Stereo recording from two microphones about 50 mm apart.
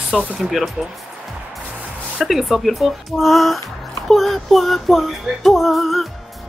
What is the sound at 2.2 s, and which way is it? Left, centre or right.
Speech, centre.